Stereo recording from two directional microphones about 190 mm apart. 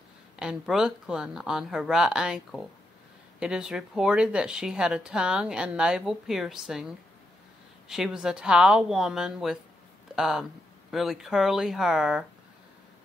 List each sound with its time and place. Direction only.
0.4 s speech: 5° right (ahead or behind)
7.9 s speech: centre (ahead or behind)